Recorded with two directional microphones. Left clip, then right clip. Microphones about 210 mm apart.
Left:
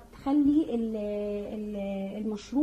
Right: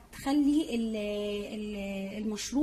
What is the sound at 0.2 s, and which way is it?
Speech, 35° right (ahead or behind).